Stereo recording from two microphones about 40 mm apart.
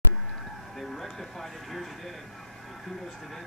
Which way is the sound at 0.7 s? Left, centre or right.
Centre.